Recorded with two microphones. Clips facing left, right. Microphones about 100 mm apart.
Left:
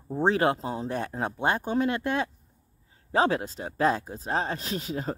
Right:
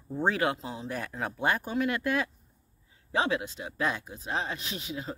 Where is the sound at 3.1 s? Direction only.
40° left (ahead or behind).